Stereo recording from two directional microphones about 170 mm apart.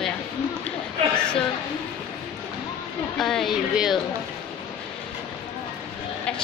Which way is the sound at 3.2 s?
Centre (ahead or behind).